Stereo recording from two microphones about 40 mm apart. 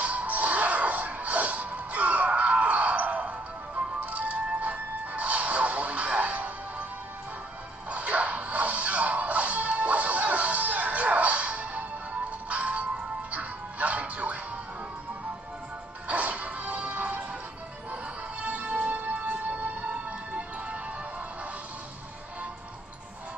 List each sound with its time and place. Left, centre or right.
0.0 s music: right
7.9 s music: right
16.1 s music: right
18.4 s music: right